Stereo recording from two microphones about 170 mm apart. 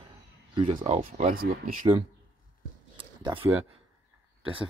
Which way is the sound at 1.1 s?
50° right (ahead or behind).